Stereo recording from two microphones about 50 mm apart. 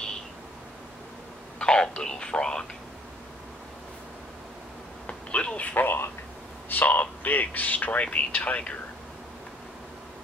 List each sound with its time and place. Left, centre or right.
1.6 s speech: centre
5.0 s a sound: left
6.7 s speech: left